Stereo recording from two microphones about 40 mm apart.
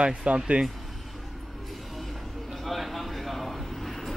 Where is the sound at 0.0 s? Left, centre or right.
Right.